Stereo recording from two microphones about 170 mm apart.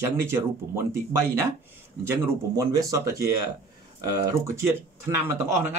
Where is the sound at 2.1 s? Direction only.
20° right (ahead or behind).